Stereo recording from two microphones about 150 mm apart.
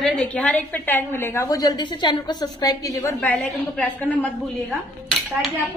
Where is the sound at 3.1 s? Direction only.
10° left (ahead or behind).